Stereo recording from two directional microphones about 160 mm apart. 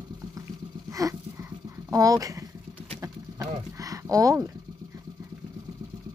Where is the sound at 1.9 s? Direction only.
20° right (ahead or behind).